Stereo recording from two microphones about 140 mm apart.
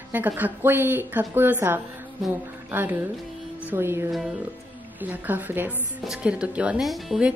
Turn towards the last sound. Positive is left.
turn(degrees=-5)  # may be behind; listen again after turning